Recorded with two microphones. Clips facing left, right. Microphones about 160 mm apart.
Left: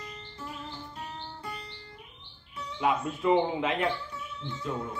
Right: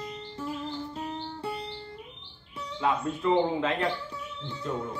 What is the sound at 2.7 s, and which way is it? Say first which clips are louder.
Speech: even; 15° left (ahead or behind).